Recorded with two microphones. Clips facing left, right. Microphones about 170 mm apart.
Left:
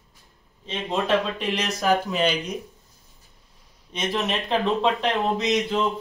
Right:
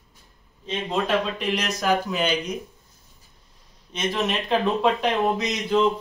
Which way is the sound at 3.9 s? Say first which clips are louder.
Right 1 dB; centre (ahead or behind).